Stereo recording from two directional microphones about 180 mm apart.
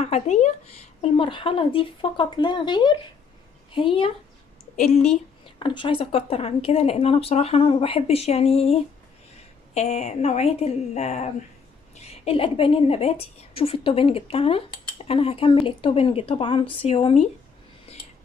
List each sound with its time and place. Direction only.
0.0 s a woman's voice: 35° left (ahead or behind)
5.6 s a woman's voice: 30° left (ahead or behind)
9.8 s a woman's voice: 40° left (ahead or behind)